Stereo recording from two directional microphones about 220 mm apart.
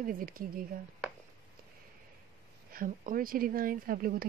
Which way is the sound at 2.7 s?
40° right (ahead or behind).